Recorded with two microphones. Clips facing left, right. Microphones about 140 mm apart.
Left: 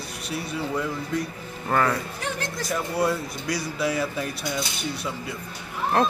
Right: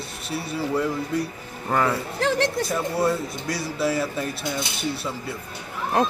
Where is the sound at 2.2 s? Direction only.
80° right.